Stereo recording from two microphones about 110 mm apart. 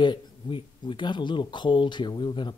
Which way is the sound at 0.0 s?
45° left (ahead or behind).